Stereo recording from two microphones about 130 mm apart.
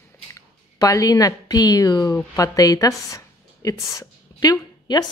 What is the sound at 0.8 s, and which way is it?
A woman's voice, 30° left (ahead or behind).